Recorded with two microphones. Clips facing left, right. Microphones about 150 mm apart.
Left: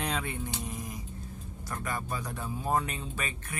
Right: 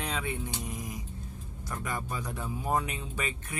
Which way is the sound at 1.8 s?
15° right (ahead or behind).